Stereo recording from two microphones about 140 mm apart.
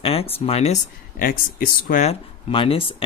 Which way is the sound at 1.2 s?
85° left.